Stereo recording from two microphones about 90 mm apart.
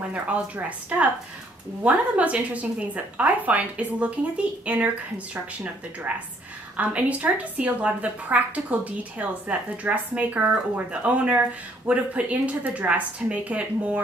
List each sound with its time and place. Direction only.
0.1 s a woman's voice: 15° right (ahead or behind)
6.8 s a woman's voice: 15° right (ahead or behind)